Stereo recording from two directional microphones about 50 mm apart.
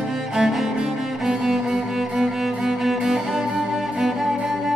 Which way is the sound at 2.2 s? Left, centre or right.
Centre.